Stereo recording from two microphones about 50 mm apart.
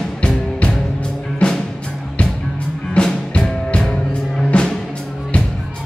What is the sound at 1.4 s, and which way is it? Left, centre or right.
Music, centre.